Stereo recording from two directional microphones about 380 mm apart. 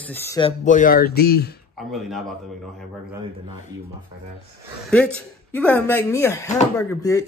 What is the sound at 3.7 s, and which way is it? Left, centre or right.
Speech, centre.